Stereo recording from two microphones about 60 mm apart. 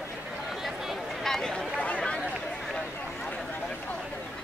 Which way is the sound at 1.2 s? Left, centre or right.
Centre.